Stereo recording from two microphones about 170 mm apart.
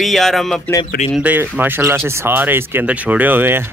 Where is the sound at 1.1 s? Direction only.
10° right (ahead or behind).